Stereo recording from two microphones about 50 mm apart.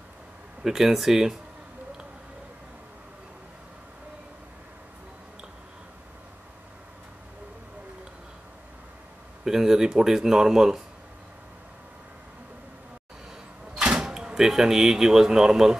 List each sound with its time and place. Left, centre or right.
0.7 s speech: centre
9.4 s speech: centre
13.7 s speech: centre